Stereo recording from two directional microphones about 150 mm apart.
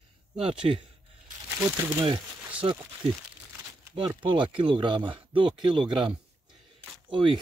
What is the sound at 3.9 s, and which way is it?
Speech, 30° right (ahead or behind).